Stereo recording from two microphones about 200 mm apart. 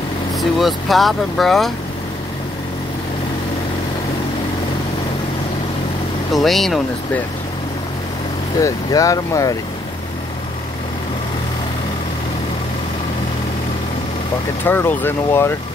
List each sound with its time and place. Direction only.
0.4 s speech: centre (ahead or behind)
6.3 s speech: centre (ahead or behind)
8.5 s speech: 15° left (ahead or behind)
14.6 s speech: 10° left (ahead or behind)